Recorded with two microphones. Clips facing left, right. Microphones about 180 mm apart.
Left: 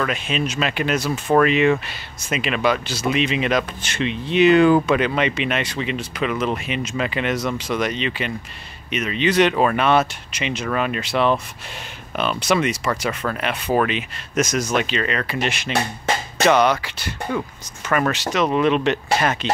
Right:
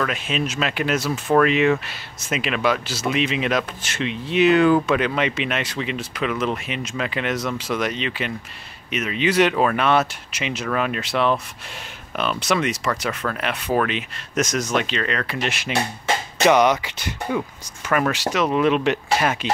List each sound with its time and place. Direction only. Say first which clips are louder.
0.0 s speech: left 1 dB; centre (ahead or behind)
16.4 s speech: even; 15° right (ahead or behind)
17.8 s speech: even; 5° right (ahead or behind)